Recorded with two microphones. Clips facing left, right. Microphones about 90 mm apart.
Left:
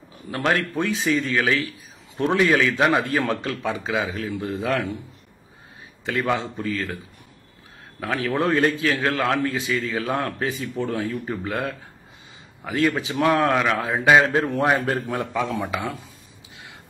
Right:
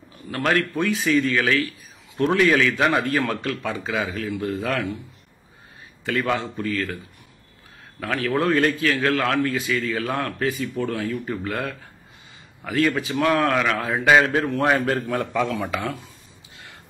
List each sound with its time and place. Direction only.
0.5 s a man's voice: 25° left (ahead or behind)
6.0 s a man's voice: 20° left (ahead or behind)
8.0 s a man's voice: 20° left (ahead or behind)